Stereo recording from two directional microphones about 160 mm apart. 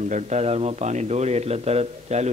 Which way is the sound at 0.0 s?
45° right (ahead or behind).